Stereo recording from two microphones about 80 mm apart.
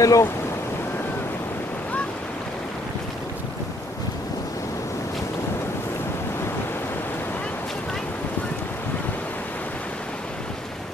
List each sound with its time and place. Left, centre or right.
0.0 s speech: left